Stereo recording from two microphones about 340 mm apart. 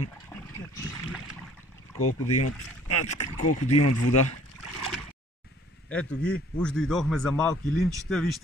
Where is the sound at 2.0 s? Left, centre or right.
Left.